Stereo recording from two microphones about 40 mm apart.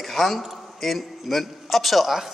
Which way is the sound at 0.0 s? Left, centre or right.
Centre.